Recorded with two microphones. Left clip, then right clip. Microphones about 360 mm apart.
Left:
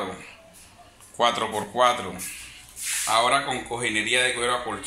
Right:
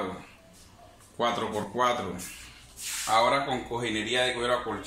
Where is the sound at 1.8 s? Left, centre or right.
Centre.